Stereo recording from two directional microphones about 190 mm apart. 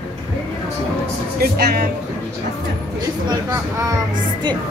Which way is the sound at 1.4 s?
55° right (ahead or behind).